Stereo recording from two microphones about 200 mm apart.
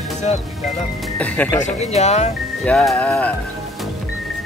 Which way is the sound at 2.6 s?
5° left (ahead or behind).